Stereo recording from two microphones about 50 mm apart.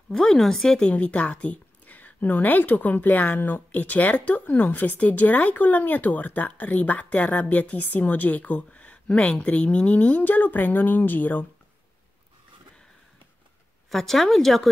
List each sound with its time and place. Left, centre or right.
0.1 s speech: centre
0.9 s speech: left
13.8 s a woman's voice: centre